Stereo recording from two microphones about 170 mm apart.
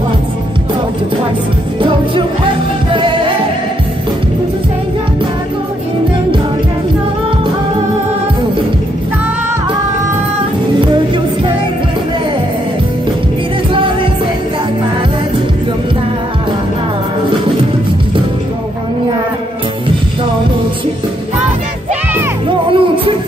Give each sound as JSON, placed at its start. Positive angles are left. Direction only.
{"t": 1.8, "sound": "music", "side_deg": -30}
{"t": 22.7, "sound": "music", "side_deg": -30}